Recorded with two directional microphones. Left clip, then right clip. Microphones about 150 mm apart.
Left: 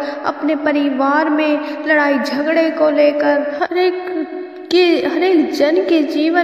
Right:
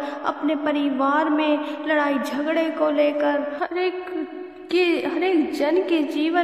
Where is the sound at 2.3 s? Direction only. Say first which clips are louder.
Left 8 dB; 30° left (ahead or behind).